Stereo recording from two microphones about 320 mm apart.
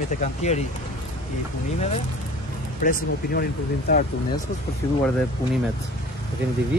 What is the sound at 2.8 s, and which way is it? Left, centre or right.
Speech, left.